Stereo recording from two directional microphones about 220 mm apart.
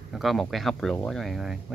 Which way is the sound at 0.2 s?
Centre (ahead or behind).